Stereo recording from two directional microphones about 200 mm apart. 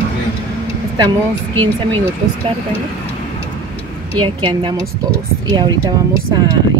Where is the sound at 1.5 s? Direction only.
25° right (ahead or behind).